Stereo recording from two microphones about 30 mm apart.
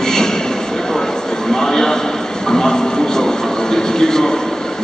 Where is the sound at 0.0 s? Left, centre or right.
Centre.